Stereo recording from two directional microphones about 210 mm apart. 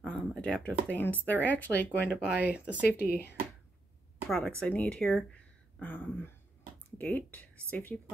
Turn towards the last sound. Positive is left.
turn(degrees=10)  # may be behind; listen again after turning